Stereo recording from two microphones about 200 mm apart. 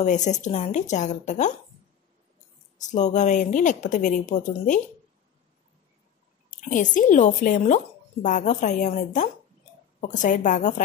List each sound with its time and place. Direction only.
0.0 s a woman's voice: 35° left (ahead or behind)
2.8 s a woman's voice: 35° left (ahead or behind)
6.6 s a woman's voice: 40° left (ahead or behind)